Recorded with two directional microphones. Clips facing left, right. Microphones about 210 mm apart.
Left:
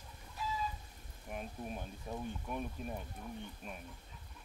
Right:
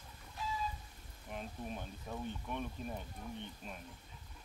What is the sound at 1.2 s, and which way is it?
Speech, 10° left (ahead or behind).